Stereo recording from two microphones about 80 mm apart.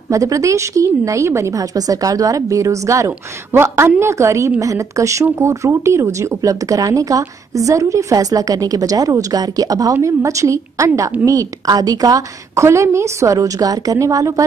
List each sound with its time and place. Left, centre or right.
0.1 s speech: right
3.1 s a woman's voice: right